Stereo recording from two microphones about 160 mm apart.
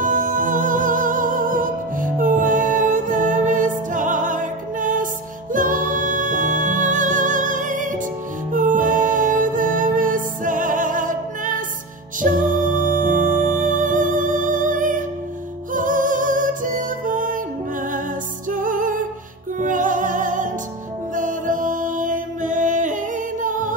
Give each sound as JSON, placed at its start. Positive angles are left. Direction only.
{"t": 0.0, "sound": "music", "side_deg": -55}
{"t": 18.5, "sound": "music", "side_deg": -55}